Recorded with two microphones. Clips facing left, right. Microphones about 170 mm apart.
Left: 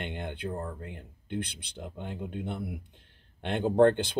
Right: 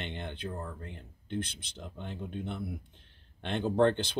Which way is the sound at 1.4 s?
60° left (ahead or behind).